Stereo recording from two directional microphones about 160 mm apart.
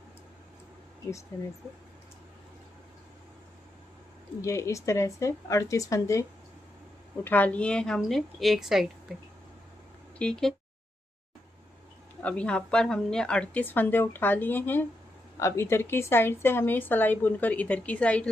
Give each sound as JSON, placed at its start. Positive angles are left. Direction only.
{"t": 4.4, "sound": "a woman's voice", "side_deg": 20}
{"t": 7.2, "sound": "a woman's voice", "side_deg": 10}
{"t": 10.1, "sound": "speech", "side_deg": 5}
{"t": 12.2, "sound": "speech", "side_deg": 10}